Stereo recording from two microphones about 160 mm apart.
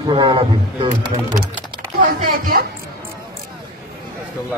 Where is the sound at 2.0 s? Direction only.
65° right (ahead or behind).